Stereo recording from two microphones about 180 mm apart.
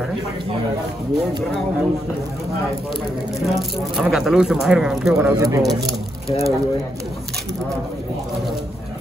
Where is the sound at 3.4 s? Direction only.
Centre (ahead or behind).